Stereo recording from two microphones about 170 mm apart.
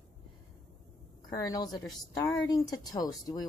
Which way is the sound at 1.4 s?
20° left (ahead or behind).